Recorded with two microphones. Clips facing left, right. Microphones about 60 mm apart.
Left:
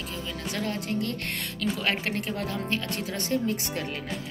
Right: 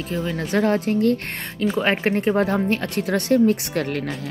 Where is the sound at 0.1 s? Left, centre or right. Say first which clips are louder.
Right 13 dB; right.